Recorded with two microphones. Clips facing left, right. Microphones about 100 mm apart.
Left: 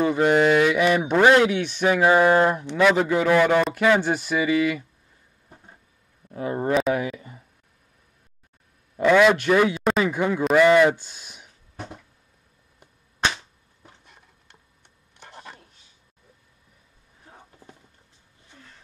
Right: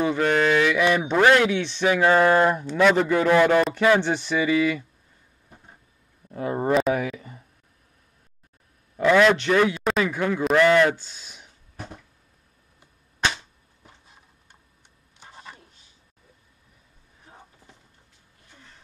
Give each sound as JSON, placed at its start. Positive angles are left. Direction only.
{"t": 0.1, "sound": "mantra", "side_deg": 10}
{"t": 2.8, "sound": "a man's voice", "side_deg": 5}
{"t": 4.0, "sound": "mantra", "side_deg": 10}
{"t": 6.5, "sound": "a man's voice", "side_deg": -5}
{"t": 8.9, "sound": "a man's voice", "side_deg": 5}
{"t": 10.4, "sound": "mantra", "side_deg": 5}
{"t": 14.0, "sound": "a sound", "side_deg": 65}
{"t": 15.1, "sound": "vehicle", "side_deg": 65}